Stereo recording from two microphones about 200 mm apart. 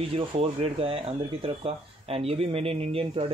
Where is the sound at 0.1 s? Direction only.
30° right (ahead or behind).